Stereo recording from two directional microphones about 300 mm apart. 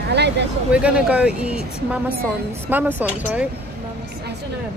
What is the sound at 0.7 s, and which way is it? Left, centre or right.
Speech, centre.